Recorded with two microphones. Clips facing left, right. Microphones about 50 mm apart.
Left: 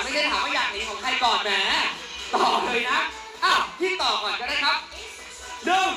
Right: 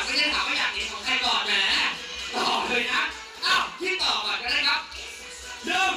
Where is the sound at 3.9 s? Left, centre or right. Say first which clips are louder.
Left 3 dB; left.